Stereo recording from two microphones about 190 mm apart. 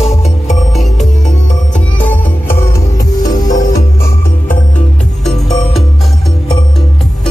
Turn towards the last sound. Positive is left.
turn(degrees=0)  # may be behind; listen again after turning